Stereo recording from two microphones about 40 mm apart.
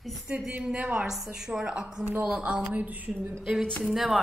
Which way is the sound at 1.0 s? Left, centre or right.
Centre.